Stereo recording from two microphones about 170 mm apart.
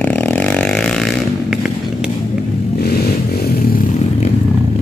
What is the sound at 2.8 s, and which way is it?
Vehicle, 65° left (ahead or behind).